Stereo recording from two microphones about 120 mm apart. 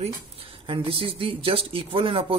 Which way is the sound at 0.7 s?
50° right (ahead or behind).